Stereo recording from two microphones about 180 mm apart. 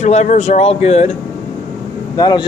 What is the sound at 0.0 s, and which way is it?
Speech, 40° left (ahead or behind).